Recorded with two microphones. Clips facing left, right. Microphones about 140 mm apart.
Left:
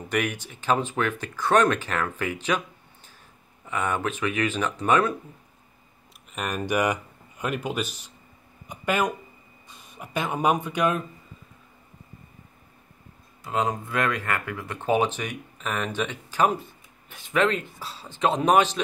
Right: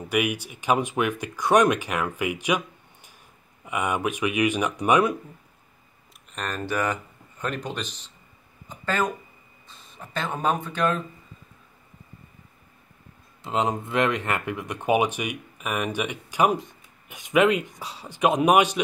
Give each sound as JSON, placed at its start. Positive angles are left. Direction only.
{"t": 0.1, "sound": "speech", "side_deg": -10}
{"t": 3.6, "sound": "speech", "side_deg": -15}
{"t": 6.3, "sound": "speech", "side_deg": 10}
{"t": 13.4, "sound": "speech", "side_deg": -20}